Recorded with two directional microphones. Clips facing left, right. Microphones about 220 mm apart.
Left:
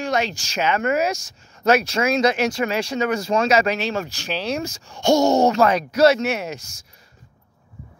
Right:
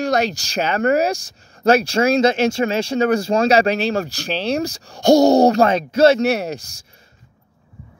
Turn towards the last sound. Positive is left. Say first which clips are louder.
# right 5 dB
turn(degrees=-35)  # may be behind; listen again after turning